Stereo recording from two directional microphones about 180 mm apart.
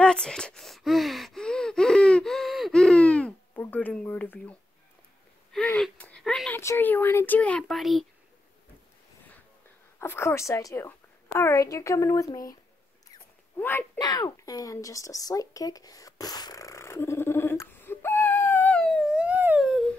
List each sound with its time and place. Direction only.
0.0 s gasp: 5° left (ahead or behind)
3.6 s a sound: 10° left (ahead or behind)
6.6 s speech: 15° left (ahead or behind)
9.9 s speech: 15° left (ahead or behind)
13.6 s speech: 10° left (ahead or behind)
13.9 s a sound: 20° left (ahead or behind); by 19.8 s 5° right (ahead or behind)